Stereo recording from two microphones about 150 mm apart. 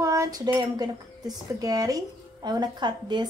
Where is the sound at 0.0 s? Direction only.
20° right (ahead or behind).